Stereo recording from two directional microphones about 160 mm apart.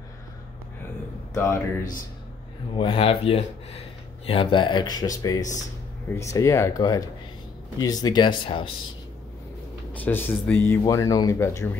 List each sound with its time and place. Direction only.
1.3 s speech: 15° left (ahead or behind)
2.8 s speech: 35° left (ahead or behind)
9.9 s speech: 10° left (ahead or behind)